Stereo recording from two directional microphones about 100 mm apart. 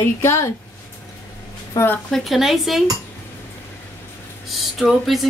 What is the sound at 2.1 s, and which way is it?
Speech, centre (ahead or behind).